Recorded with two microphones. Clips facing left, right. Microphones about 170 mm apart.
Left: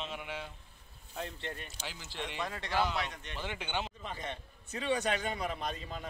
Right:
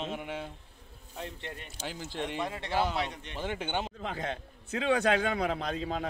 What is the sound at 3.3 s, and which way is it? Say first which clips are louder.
Speech: right 5 dB; 45° right (ahead or behind).